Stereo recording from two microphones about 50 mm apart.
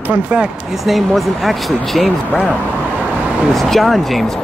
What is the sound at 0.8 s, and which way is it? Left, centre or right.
Speech, centre.